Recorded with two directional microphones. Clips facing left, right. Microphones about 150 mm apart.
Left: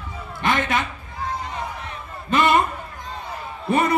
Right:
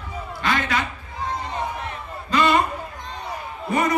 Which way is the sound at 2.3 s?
25° left (ahead or behind).